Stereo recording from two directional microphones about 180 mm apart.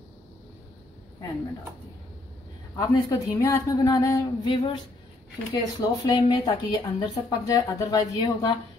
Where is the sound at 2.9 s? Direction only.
15° left (ahead or behind).